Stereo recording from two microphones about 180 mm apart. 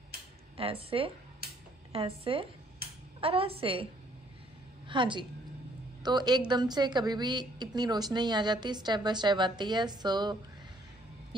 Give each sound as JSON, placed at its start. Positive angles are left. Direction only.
{"t": 0.6, "sound": "a woman's voice", "side_deg": -30}
{"t": 4.8, "sound": "a woman's voice", "side_deg": -25}